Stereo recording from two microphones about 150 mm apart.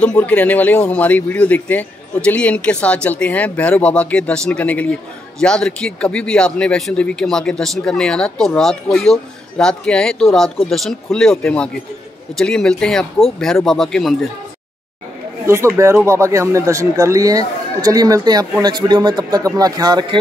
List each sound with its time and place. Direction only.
0.0 s a man's voice: 10° left (ahead or behind)
15.4 s speech: 20° right (ahead or behind)